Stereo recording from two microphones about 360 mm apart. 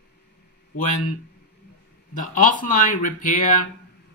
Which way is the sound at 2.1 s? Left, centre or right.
Left.